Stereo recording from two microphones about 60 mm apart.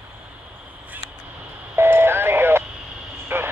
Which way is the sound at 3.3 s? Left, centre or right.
Right.